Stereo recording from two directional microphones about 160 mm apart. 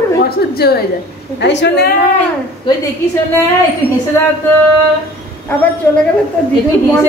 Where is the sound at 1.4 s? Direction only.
90° left.